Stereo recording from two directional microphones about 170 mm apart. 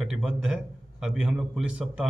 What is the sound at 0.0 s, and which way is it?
A man's voice, 5° right (ahead or behind).